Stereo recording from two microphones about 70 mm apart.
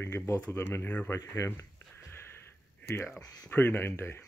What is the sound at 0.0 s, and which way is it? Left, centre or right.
Speech, left.